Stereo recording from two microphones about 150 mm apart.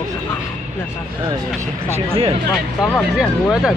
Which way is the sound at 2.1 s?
40° right (ahead or behind).